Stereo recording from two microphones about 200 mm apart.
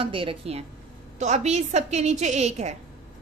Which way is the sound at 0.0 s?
25° right (ahead or behind).